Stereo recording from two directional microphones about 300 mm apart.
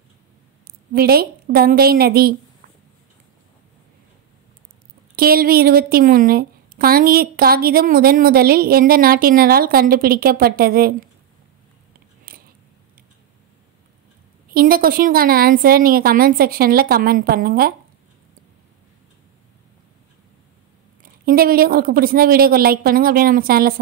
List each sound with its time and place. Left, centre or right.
0.7 s a woman's voice: right
5.1 s a woman's voice: right
12.3 s a sound: right
14.5 s a woman's voice: right
21.0 s a woman's voice: right